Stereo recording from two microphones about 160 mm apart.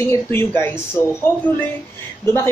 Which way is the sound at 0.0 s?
15° left (ahead or behind).